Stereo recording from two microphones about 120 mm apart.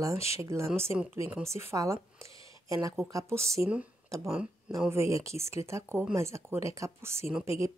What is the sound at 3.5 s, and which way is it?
Speech, 10° right (ahead or behind).